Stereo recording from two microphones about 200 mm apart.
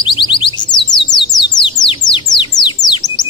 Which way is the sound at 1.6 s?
25° left (ahead or behind).